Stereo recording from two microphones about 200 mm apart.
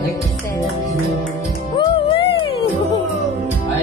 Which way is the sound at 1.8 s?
25° left (ahead or behind).